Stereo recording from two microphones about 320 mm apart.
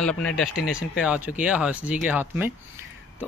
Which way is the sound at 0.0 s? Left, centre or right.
Centre.